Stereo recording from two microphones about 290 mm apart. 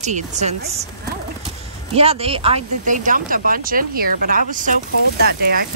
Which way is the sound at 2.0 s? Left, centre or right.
Centre.